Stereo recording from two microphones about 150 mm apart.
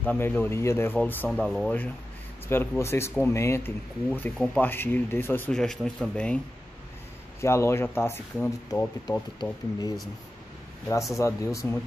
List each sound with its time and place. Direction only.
0.0 s speech: 10° left (ahead or behind)
2.4 s speech: 15° left (ahead or behind)
5.5 s speech: 5° left (ahead or behind)
7.3 s speech: 20° left (ahead or behind)
11.1 s speech: 20° left (ahead or behind)